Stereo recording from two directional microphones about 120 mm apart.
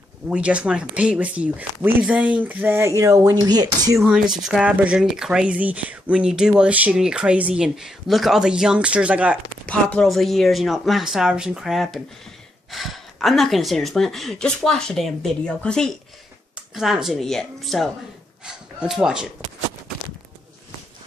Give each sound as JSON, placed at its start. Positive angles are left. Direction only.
{"t": 0.3, "sound": "speech", "side_deg": -10}
{"t": 4.0, "sound": "speech", "side_deg": -5}
{"t": 9.7, "sound": "speech", "side_deg": 10}
{"t": 16.5, "sound": "speech", "side_deg": -5}